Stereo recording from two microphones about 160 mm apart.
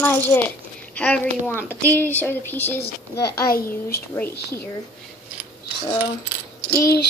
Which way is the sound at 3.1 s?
80° left.